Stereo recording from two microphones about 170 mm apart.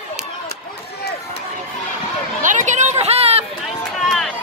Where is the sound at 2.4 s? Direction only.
45° right (ahead or behind).